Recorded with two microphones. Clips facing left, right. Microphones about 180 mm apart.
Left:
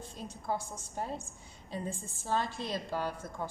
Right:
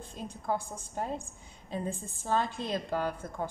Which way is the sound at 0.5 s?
50° right (ahead or behind).